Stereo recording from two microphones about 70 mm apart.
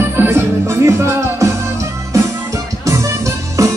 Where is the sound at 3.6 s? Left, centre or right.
Right.